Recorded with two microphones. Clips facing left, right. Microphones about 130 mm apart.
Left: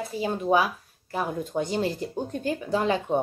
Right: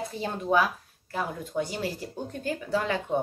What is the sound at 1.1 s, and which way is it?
Speech, 20° left (ahead or behind).